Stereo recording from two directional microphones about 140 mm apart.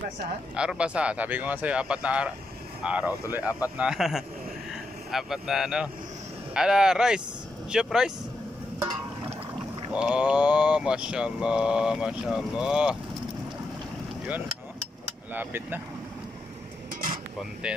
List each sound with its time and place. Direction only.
0.6 s speech: 5° right (ahead or behind)
9.9 s speech: 5° right (ahead or behind)
15.0 s speech: 15° right (ahead or behind)
16.9 s a sound: 75° right (ahead or behind)
17.4 s speech: 5° right (ahead or behind)